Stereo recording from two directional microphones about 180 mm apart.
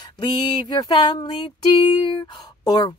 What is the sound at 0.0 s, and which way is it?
Speech, 25° left (ahead or behind).